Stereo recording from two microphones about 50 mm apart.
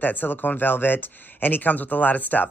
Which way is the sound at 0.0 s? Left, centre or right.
Left.